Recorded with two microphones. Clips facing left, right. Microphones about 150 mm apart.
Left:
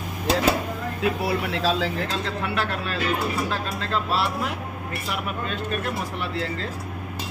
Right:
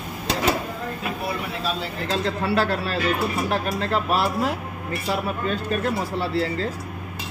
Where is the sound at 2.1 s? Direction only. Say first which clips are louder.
Right 4 dB; 35° right (ahead or behind).